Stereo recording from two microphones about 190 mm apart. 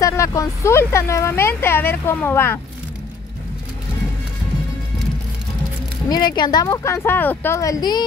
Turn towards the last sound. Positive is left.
turn(degrees=20)  # may be behind; listen again after turning